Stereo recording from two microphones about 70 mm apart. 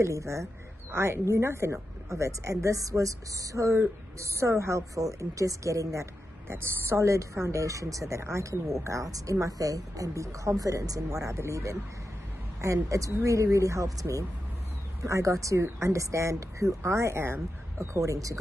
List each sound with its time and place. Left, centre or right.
0.0 s speech: right
6.4 s speech: right